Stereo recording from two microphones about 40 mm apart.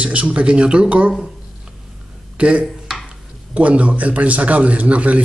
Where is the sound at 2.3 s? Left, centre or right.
Right.